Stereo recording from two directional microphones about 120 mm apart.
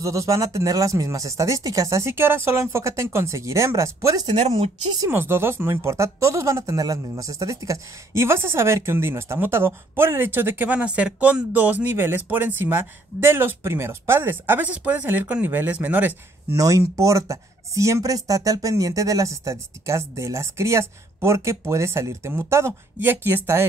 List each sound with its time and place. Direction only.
0.0 s speech: 25° right (ahead or behind)
16.5 s speech: 25° right (ahead or behind)